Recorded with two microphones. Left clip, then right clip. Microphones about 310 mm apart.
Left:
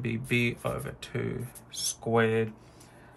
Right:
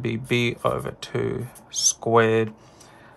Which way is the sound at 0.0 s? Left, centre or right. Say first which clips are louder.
Right 5 dB; centre.